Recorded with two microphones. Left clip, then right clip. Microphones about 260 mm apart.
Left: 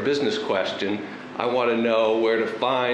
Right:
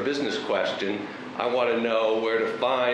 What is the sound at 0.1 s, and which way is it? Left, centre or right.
A man's voice, right.